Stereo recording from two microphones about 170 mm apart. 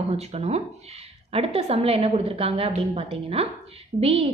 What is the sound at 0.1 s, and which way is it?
A woman's voice, 40° right (ahead or behind).